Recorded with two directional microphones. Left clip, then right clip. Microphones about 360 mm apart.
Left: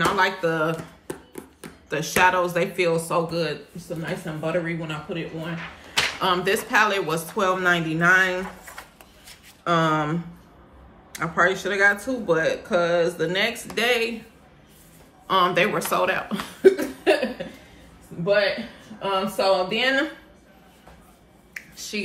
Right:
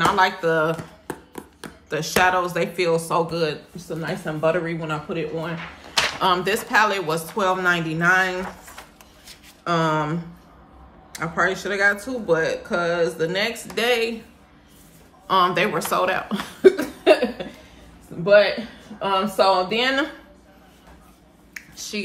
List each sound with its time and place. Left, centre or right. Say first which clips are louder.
0.0 s speech: right 3 dB; centre
1.9 s speech: even; centre
11.1 s speech: left 1 dB; centre
15.2 s speech: right 1 dB; centre
18.2 s speech: right 5 dB; centre
21.5 s finger snapping: right 1 dB; centre